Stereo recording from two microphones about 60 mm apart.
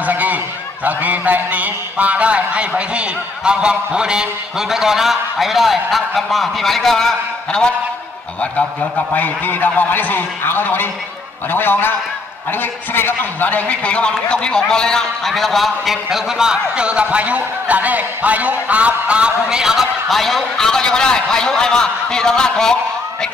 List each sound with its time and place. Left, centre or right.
0.0 s a sound: right
0.8 s a man's voice: right; by 7.7 s centre
9.1 s a man's voice: left; by 22.8 s centre